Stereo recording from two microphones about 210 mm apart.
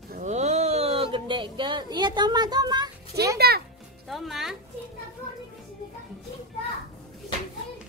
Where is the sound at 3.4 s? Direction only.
50° right (ahead or behind).